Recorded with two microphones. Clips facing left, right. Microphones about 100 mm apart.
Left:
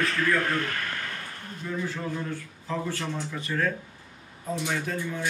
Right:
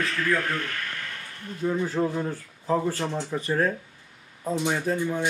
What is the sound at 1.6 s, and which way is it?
A man's voice, 40° right (ahead or behind).